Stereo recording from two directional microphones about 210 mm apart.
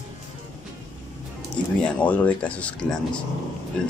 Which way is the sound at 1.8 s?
5° left (ahead or behind).